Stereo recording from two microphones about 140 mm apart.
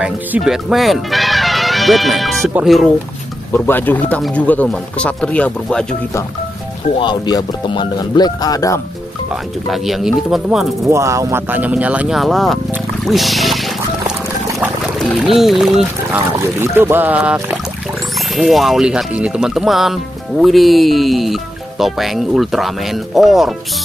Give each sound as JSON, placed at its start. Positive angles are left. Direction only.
{"t": 0.0, "sound": "speech", "side_deg": -5}
{"t": 3.5, "sound": "speech", "side_deg": 15}
{"t": 7.0, "sound": "speech", "side_deg": 30}
{"t": 9.3, "sound": "speech", "side_deg": 0}
{"t": 10.9, "sound": "speech", "side_deg": -20}
{"t": 13.0, "sound": "a sound", "side_deg": 0}
{"t": 15.1, "sound": "speech", "side_deg": 0}
{"t": 16.1, "sound": "speech", "side_deg": -15}